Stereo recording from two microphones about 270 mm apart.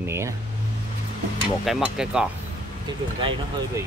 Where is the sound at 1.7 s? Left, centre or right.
Centre.